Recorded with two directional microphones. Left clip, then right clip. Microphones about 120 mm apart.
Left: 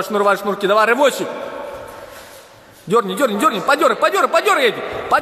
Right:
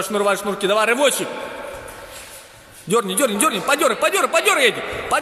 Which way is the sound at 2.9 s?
Centre (ahead or behind).